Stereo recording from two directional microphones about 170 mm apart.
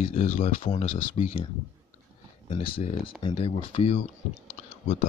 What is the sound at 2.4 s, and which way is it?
Speech, 35° left (ahead or behind).